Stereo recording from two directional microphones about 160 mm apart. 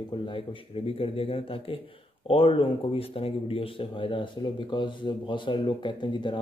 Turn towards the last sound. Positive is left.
turn(degrees=30)  # may be behind; listen again after turning